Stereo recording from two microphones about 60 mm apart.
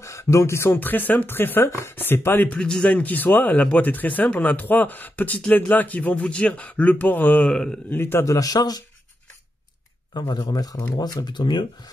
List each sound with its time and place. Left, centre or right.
0.0 s speech: left
0.7 s speech: left
2.4 s speech: centre
7.4 s speech: centre
7.9 s speech: left
8.3 s speech: left
10.5 s speech: left